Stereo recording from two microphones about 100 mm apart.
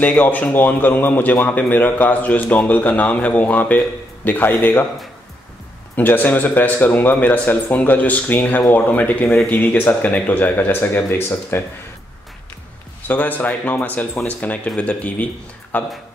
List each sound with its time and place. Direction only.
0.0 s a man's voice: 15° left (ahead or behind)
5.9 s a man's voice: 20° left (ahead or behind)
13.1 s a man's voice: 15° left (ahead or behind)